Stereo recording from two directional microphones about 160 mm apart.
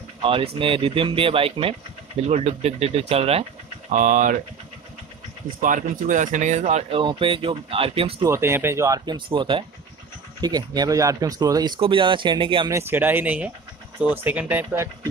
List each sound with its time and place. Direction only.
0.2 s speech: 35° right (ahead or behind)
3.9 s speech: 55° right (ahead or behind)
5.6 s speech: 55° right (ahead or behind)
7.0 s speech: 30° right (ahead or behind)
8.3 s speech: 15° right (ahead or behind); by 12.6 s 30° right (ahead or behind)
12.6 s speech: 15° right (ahead or behind)